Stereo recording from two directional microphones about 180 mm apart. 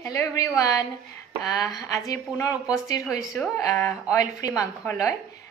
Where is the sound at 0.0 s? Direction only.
15° left (ahead or behind).